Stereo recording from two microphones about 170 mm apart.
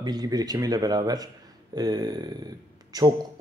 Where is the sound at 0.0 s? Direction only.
25° right (ahead or behind).